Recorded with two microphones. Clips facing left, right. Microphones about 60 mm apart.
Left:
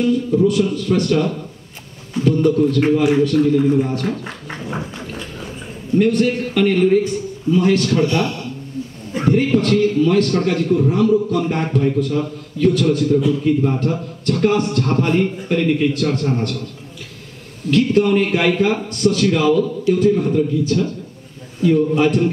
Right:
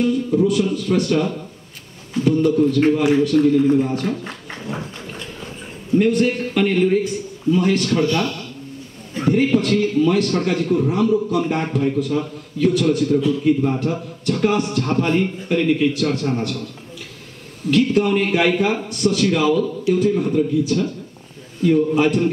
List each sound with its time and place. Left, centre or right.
0.0 s a man's voice: centre
5.9 s a man's voice: centre
8.0 s speech: left
9.2 s a man's voice: centre
17.6 s a man's voice: centre